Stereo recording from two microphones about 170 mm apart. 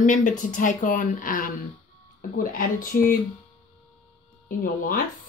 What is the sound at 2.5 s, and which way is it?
Speech, 55° left (ahead or behind).